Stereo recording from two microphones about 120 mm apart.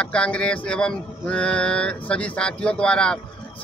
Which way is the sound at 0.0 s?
10° left (ahead or behind).